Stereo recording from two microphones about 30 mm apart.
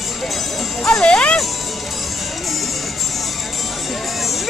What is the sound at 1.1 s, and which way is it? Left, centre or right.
Speech, left.